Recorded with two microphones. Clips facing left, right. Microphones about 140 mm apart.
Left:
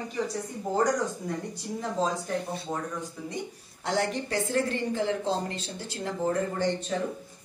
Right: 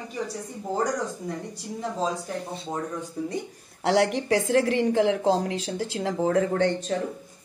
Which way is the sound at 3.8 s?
80° right.